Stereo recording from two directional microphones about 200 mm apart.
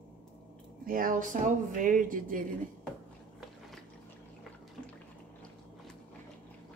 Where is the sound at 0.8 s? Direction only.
45° right (ahead or behind).